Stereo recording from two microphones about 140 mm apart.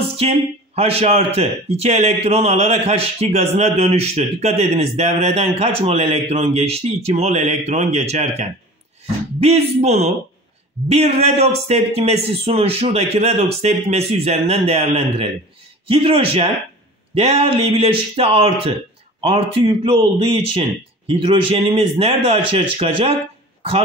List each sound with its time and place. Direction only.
0.2 s a man's voice: 45° right (ahead or behind)